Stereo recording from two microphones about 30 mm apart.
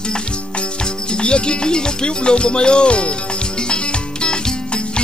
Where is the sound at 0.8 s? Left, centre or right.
Left.